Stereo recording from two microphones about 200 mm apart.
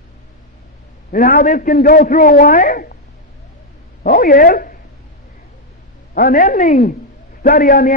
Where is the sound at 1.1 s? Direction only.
45° left (ahead or behind).